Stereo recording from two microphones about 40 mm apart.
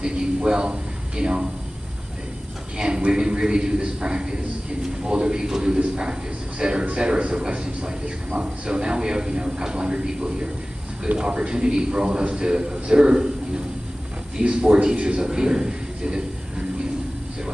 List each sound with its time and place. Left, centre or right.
0.0 s a sound: right
2.8 s a man's voice: centre
14.4 s a man's voice: right